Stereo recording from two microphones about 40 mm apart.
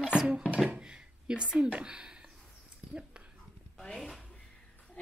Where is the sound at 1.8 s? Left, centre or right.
Right.